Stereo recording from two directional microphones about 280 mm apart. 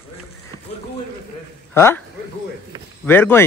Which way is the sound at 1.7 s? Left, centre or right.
Centre.